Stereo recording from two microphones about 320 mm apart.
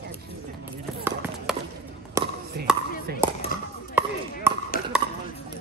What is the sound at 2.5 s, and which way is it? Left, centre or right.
Speech, right.